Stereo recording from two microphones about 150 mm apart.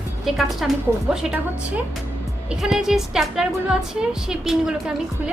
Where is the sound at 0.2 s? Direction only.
Centre (ahead or behind).